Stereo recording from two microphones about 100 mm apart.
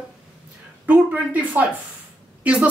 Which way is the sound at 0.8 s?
15° right (ahead or behind).